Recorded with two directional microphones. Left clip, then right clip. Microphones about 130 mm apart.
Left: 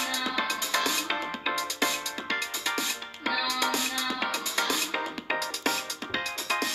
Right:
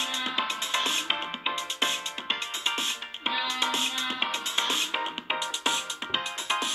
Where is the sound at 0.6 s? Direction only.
75° left (ahead or behind).